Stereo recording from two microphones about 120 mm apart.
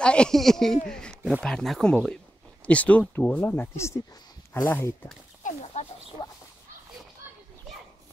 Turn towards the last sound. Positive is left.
turn(degrees=40)  # may be behind; listen again after turning